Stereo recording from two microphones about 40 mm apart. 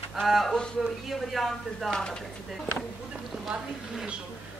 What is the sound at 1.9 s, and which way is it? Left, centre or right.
Speech, centre.